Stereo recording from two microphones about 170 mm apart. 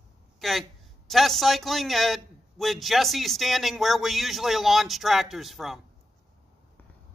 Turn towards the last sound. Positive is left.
turn(degrees=0)  # may be behind; listen again after turning